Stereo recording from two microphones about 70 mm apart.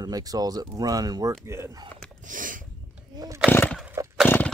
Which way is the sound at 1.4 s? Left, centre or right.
Right.